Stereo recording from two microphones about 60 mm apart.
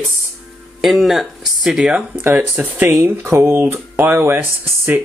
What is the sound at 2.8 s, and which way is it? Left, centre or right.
Speech, right.